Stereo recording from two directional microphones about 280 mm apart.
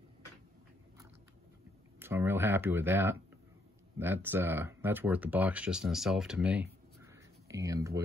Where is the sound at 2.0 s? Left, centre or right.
Centre.